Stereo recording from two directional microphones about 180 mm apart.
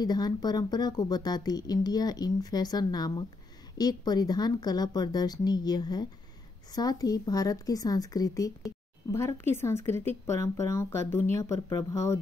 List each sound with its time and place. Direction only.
0.0 s speech: 20° left (ahead or behind)